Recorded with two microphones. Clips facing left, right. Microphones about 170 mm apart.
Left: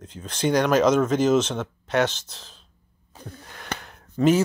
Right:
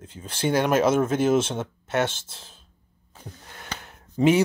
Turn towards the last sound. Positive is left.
turn(degrees=-20)  # may be behind; listen again after turning